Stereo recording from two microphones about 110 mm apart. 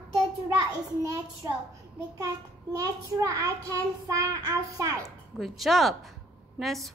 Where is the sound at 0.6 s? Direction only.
30° right (ahead or behind).